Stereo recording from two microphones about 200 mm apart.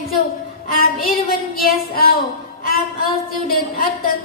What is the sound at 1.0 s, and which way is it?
A woman's voice, 45° left (ahead or behind).